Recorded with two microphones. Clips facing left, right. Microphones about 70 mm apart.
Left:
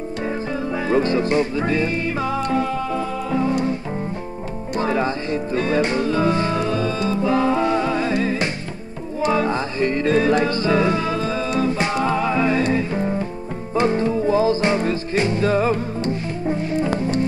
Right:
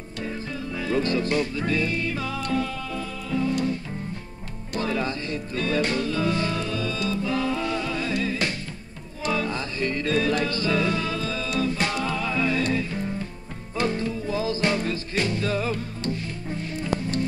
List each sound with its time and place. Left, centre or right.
0.7 s music: left
4.7 s music: left